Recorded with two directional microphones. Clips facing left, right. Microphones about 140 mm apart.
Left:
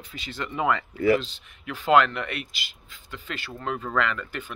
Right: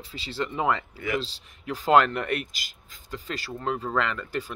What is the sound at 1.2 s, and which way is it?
Speech, 35° right (ahead or behind).